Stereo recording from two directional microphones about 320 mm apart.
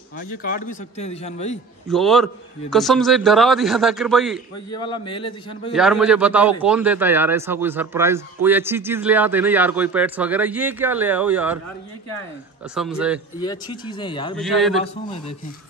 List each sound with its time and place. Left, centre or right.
0.2 s a man's voice: left
1.9 s a man's voice: centre
4.6 s speech: centre
5.7 s a man's voice: centre
12.7 s a man's voice: centre
13.4 s speech: centre
14.3 s a man's voice: centre